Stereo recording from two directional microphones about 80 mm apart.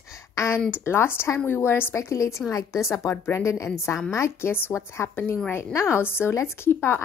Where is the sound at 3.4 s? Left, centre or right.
Left.